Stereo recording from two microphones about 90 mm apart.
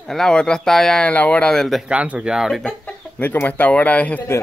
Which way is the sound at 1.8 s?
15° right (ahead or behind).